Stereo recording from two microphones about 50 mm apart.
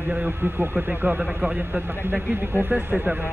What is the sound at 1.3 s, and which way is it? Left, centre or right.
A man's voice, right.